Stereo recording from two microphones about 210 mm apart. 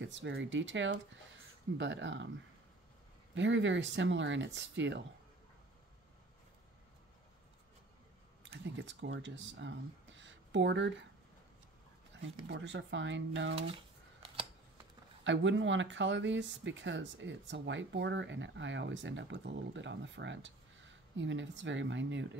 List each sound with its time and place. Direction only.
0.0 s speech: 60° right (ahead or behind)
3.3 s speech: 60° right (ahead or behind)
8.5 s speech: 55° right (ahead or behind)
12.2 s speech: 55° right (ahead or behind)
15.2 s speech: 60° right (ahead or behind)